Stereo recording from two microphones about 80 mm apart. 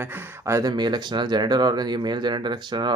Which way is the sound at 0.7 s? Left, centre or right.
Right.